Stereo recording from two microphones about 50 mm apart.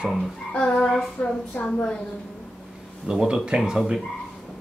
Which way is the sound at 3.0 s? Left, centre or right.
Centre.